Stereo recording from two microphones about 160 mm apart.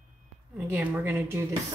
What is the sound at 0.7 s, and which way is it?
Speech, 10° right (ahead or behind).